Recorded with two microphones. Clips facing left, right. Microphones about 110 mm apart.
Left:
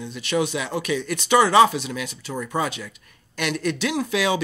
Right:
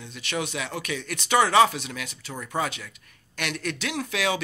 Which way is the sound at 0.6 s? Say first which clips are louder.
Left 6 dB; 25° left (ahead or behind).